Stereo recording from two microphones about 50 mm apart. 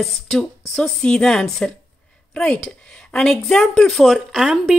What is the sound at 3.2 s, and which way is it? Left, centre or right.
Speech, centre.